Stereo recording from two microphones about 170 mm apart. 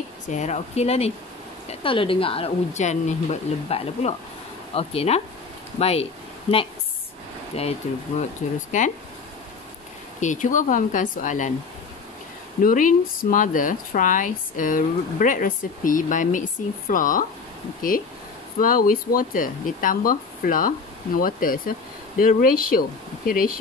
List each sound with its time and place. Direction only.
0.3 s speech: 45° left (ahead or behind)
7.5 s speech: 35° left (ahead or behind)
8.2 s speech: 50° left (ahead or behind)
10.2 s speech: 45° left (ahead or behind)
12.6 s speech: 55° left (ahead or behind)
18.6 s speech: 55° left (ahead or behind)